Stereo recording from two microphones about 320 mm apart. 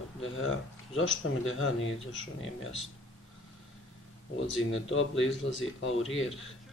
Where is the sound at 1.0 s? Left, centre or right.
Left.